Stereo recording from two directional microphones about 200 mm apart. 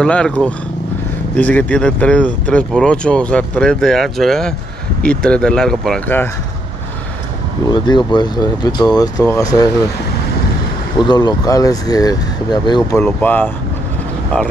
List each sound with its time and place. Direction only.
0.0 s speech: 5° left (ahead or behind)
7.7 s speech: 20° left (ahead or behind)
11.0 s speech: 20° left (ahead or behind)
13.0 s speech: 10° left (ahead or behind)